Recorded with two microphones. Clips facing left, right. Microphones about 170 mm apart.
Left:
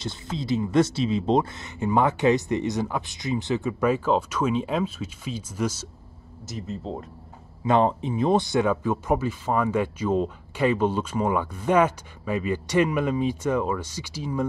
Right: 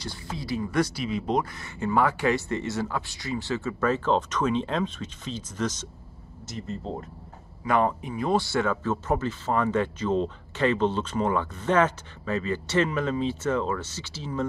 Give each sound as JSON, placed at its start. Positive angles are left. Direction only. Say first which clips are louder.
{"t": 0.0, "sound": "speech", "louder": "left 4 dB", "side_deg": 20}
{"t": 7.6, "sound": "speech", "louder": "left 3 dB", "side_deg": 25}